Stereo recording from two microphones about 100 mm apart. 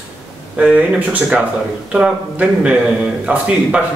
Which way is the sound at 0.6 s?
10° right (ahead or behind).